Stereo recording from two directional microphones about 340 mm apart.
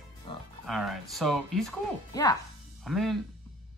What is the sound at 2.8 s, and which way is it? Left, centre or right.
Speech, centre.